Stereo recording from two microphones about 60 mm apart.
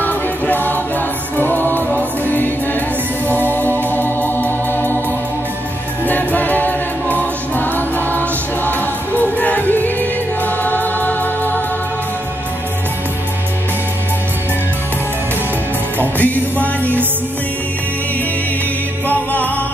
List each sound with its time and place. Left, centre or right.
0.0 s music: left
3.9 s music: left
6.0 s choir: left
16.0 s music: left
19.0 s music: left